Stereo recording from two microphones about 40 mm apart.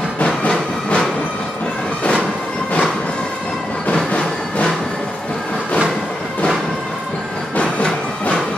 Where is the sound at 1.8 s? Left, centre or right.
Left.